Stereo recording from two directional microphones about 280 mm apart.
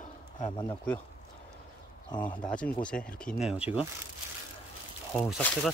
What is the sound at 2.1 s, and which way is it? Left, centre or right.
Speech, centre.